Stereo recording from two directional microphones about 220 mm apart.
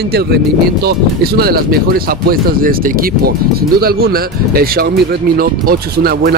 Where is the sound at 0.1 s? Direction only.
45° right (ahead or behind).